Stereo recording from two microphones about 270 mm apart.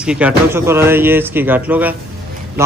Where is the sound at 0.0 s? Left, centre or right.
Centre.